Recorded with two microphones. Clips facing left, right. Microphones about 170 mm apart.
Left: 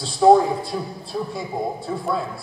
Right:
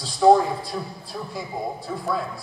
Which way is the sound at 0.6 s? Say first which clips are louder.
Left 3 dB; 25° left (ahead or behind).